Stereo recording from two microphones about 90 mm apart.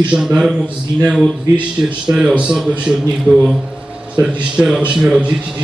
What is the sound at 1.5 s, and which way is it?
Speech, 40° right (ahead or behind).